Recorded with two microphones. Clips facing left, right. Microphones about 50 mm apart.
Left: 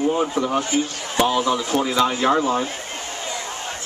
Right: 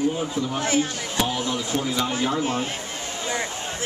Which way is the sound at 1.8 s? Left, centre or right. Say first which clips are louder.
Left 8 dB; left.